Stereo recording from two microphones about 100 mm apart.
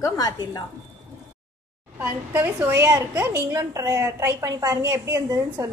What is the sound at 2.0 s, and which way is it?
A woman's voice, 25° right (ahead or behind).